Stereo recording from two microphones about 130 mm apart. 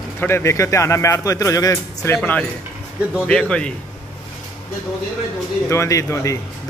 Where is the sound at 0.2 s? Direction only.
20° left (ahead or behind).